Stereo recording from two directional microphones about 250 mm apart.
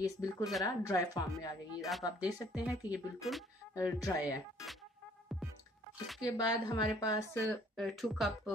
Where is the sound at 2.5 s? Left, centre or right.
Centre.